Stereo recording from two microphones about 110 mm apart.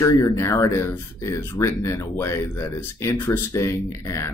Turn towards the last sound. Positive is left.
turn(degrees=25)  # may be behind; listen again after turning